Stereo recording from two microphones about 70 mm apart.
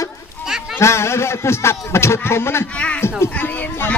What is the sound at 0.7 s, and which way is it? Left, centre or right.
A man's voice, left.